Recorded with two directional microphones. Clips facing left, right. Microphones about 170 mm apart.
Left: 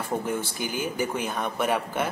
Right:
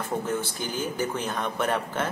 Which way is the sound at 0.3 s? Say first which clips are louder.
Even; 10° left (ahead or behind).